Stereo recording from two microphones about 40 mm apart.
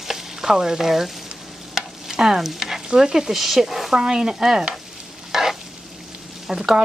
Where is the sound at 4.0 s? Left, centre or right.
Centre.